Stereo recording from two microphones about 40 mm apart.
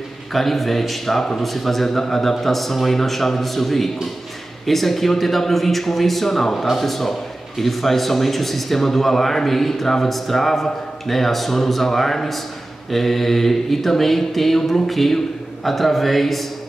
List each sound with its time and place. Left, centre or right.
0.3 s speech: centre